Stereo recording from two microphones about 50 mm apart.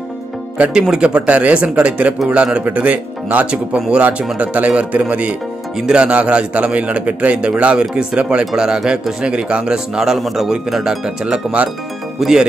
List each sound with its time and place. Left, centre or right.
0.7 s a man's voice: centre